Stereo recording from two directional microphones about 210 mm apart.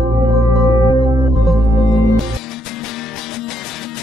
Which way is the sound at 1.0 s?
20° right (ahead or behind).